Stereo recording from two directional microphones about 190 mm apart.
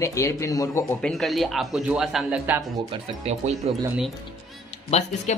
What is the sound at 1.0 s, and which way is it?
Speech, centre (ahead or behind).